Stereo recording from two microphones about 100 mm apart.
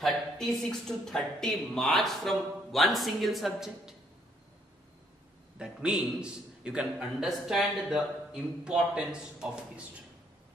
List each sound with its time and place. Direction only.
0.0 s a woman's voice: 5° left (ahead or behind)
5.6 s a man's voice: 10° right (ahead or behind)